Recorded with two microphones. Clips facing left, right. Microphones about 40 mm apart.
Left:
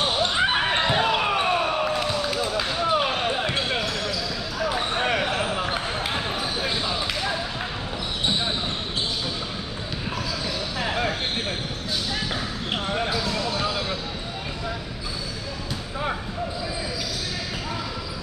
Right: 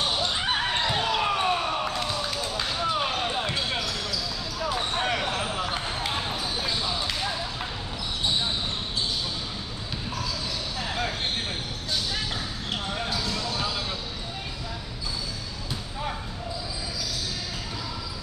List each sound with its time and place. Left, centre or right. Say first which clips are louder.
0.0 s basketball bounce: left 5 dB; left
2.9 s basketball bounce: left 5 dB; left
10.8 s a sound: left 5 dB; left
12.7 s basketball bounce: left 5 dB; left